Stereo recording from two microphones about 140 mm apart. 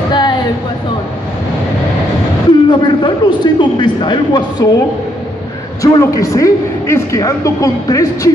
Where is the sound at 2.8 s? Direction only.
35° left (ahead or behind).